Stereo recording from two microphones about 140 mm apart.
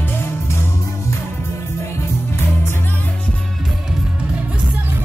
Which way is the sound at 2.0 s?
20° left (ahead or behind).